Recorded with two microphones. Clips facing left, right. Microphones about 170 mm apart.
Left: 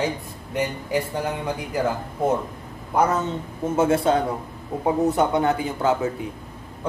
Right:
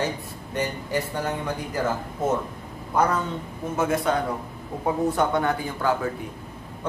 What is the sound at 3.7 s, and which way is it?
Speech, 25° left (ahead or behind).